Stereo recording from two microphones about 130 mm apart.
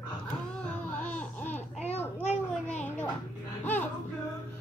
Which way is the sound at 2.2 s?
65° left (ahead or behind).